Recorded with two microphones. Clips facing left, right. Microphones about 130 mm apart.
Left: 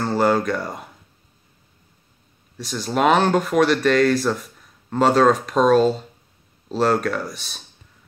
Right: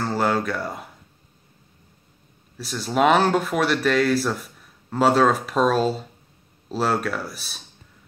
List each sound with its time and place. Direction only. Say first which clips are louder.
0.0 s speech: left 4 dB; centre (ahead or behind)
2.5 s speech: left 1 dB; centre (ahead or behind)